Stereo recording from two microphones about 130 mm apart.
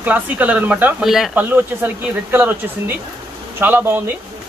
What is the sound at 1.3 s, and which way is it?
Speech, 15° right (ahead or behind).